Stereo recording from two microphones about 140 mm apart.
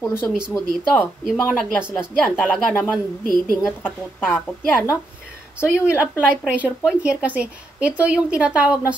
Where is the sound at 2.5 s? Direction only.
5° left (ahead or behind).